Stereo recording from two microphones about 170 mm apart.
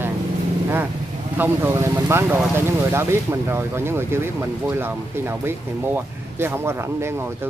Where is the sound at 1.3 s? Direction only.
10° right (ahead or behind).